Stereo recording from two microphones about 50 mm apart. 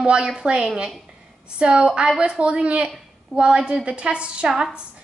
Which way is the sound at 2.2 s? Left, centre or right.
Centre.